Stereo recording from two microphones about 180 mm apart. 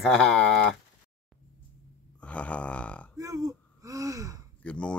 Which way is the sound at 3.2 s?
20° right (ahead or behind).